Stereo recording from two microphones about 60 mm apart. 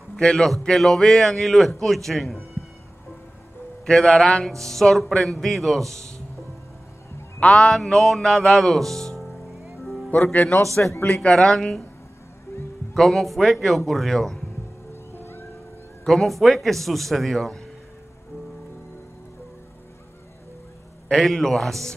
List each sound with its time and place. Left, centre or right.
0.1 s a man's voice: centre
3.8 s a man's voice: centre
7.7 s a man's voice: centre
9.2 s music: centre
10.1 s speech: left
11.3 s a man's voice: centre
12.9 s a man's voice: centre
15.1 s music: left
16.0 s a man's voice: centre
21.1 s a man's voice: centre